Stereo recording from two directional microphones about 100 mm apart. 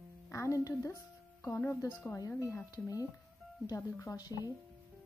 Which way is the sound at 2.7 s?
40° left (ahead or behind).